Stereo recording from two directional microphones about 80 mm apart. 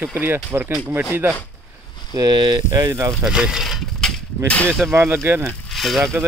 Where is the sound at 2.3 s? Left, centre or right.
Right.